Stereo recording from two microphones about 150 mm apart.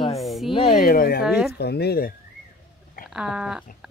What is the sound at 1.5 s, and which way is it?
Speech, 90° left.